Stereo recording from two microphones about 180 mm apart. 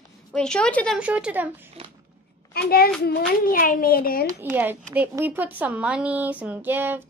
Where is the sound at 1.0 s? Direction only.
5° right (ahead or behind).